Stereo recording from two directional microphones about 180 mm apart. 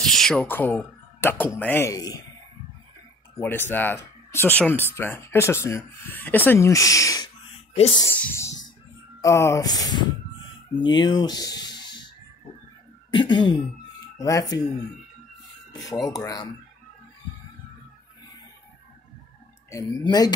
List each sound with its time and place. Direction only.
0.0 s speech: centre (ahead or behind); by 2.2 s 20° left (ahead or behind)
3.3 s speech: 10° left (ahead or behind)
13.1 s speech: 25° left (ahead or behind)
15.7 s speech: 20° left (ahead or behind)
19.7 s speech: 20° left (ahead or behind)